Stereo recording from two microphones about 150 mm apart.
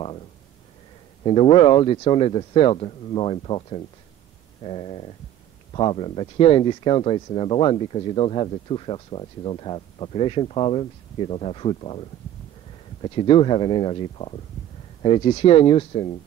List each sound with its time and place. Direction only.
1.2 s speech: 35° left (ahead or behind)